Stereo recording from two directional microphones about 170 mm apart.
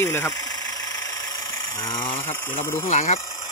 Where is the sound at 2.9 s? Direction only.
40° left (ahead or behind).